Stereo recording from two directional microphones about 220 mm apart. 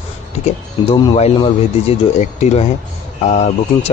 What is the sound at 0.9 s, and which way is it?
A man's voice, 20° left (ahead or behind).